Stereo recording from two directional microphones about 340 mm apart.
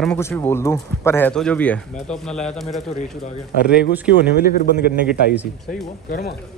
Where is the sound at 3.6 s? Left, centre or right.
Left.